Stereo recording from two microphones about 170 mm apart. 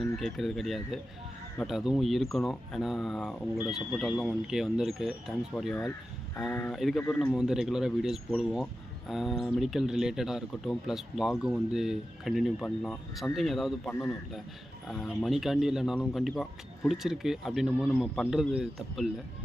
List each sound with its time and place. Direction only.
0.2 s speech: centre (ahead or behind)
5.8 s speech: 15° left (ahead or behind)
6.5 s a man's voice: centre (ahead or behind)
7.3 s speech: 5° right (ahead or behind)